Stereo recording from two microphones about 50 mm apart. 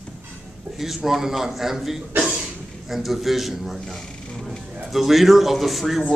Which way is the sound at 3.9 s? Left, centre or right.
Centre.